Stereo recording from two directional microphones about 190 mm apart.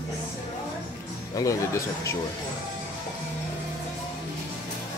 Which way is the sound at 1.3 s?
15° left (ahead or behind).